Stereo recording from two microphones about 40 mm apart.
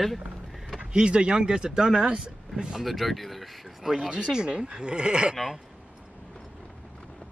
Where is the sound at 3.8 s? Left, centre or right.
Centre.